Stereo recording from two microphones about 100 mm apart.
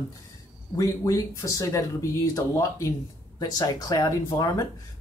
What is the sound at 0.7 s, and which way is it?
Speech, 35° left (ahead or behind).